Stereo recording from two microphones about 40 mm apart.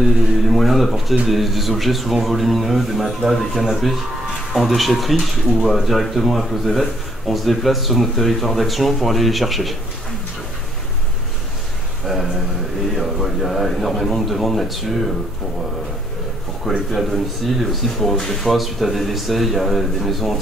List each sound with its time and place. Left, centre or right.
0.0 s speech: centre
12.1 s a sound: centre
13.2 s a man's voice: centre
16.7 s speech: centre